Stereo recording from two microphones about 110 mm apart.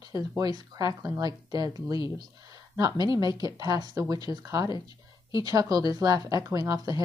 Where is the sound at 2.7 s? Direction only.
35° right (ahead or behind).